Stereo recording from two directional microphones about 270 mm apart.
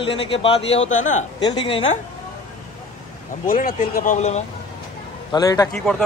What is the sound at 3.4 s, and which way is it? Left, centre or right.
Speech, left.